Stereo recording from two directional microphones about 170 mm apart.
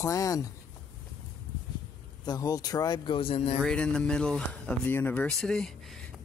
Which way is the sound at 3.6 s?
5° left (ahead or behind).